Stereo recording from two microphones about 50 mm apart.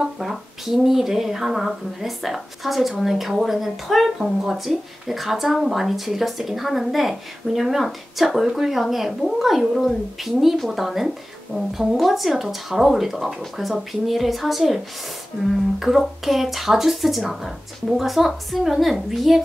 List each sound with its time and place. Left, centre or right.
0.0 s speech: centre
16.3 s speech: centre